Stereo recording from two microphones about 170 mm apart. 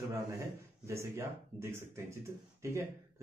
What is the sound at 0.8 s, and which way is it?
Speech, 15° right (ahead or behind).